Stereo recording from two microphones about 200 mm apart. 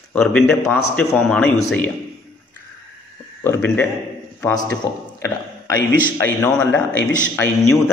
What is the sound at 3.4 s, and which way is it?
A man's voice, 10° left (ahead or behind).